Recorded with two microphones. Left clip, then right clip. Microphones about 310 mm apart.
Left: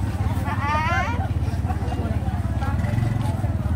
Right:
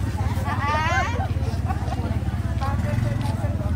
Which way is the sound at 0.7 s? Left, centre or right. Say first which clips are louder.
Even; right.